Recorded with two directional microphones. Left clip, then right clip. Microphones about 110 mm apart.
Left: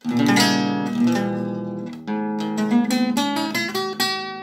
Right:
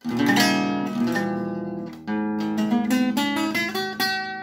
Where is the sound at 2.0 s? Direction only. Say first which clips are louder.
Left 1 dB; 15° right (ahead or behind).